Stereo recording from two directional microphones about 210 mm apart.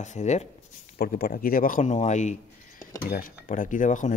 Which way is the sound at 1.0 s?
45° left (ahead or behind).